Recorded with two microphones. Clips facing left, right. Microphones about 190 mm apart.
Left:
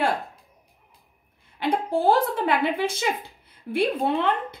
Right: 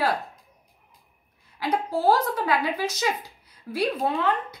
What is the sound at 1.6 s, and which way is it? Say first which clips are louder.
A woman's voice: left 2 dB; 30° left (ahead or behind).